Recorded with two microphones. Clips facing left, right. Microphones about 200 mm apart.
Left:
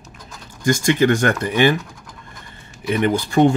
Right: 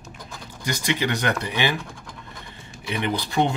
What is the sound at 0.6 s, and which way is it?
Speech, 50° left (ahead or behind).